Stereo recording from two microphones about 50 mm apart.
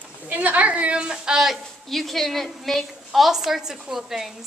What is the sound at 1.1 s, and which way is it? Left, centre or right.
Speech, centre.